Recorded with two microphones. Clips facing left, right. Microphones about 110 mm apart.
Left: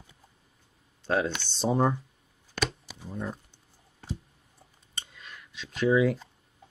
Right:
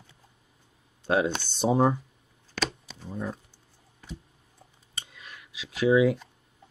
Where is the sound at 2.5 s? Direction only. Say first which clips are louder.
Even; 10° left (ahead or behind).